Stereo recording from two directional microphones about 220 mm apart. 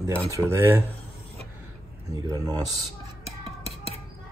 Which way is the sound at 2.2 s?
15° right (ahead or behind).